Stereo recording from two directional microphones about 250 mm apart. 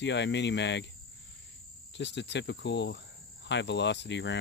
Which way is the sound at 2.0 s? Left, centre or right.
Left.